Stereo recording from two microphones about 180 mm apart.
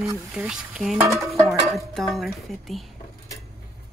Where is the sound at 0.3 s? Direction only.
Centre (ahead or behind).